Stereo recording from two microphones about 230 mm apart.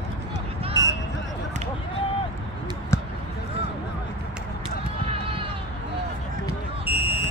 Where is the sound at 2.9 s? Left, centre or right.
Centre.